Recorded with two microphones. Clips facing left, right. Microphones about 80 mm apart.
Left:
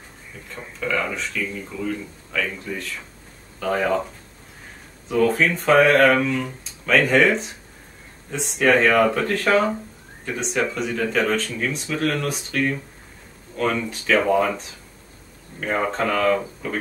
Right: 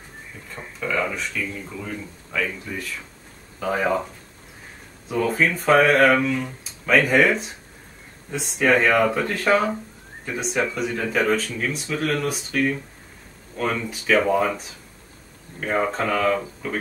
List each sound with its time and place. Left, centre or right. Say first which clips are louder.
0.7 s speech: even; centre
5.1 s speech: left 3 dB; centre